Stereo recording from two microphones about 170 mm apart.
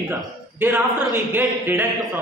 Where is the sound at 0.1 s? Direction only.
10° right (ahead or behind).